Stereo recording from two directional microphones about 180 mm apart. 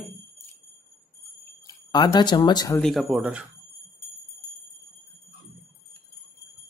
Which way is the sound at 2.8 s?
Centre (ahead or behind).